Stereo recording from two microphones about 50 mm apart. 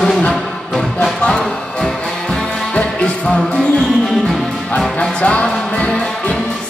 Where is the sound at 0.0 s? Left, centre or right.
Centre.